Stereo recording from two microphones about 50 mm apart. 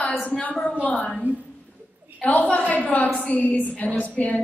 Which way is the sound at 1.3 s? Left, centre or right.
Right.